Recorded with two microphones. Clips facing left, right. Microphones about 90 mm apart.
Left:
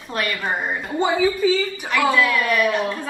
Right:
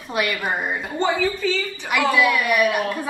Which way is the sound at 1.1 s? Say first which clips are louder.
Left 4 dB; 15° left (ahead or behind).